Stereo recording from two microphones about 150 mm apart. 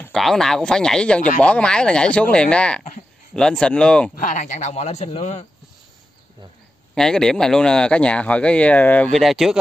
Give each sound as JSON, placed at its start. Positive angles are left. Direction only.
{"t": 0.1, "sound": "speech", "side_deg": 0}
{"t": 4.1, "sound": "a man's voice", "side_deg": 65}
{"t": 7.0, "sound": "speech", "side_deg": 5}